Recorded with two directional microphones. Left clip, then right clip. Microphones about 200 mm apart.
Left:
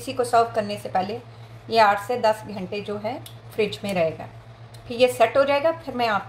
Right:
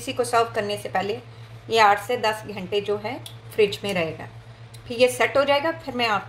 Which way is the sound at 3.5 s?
90° right.